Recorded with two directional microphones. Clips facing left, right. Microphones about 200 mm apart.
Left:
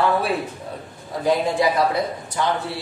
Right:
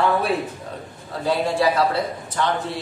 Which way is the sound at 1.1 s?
15° left (ahead or behind).